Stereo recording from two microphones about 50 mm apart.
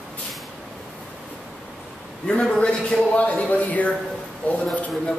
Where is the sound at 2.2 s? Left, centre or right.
Centre.